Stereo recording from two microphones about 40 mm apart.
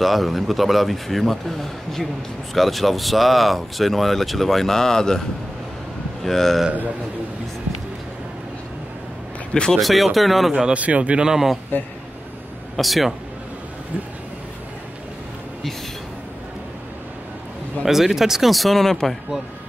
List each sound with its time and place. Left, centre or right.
0.0 s speech: centre
6.2 s speech: centre
9.5 s speech: centre
9.8 s speech: centre
10.7 s speech: right
11.1 s a man's voice: centre
12.7 s speech: centre
17.8 s speech: centre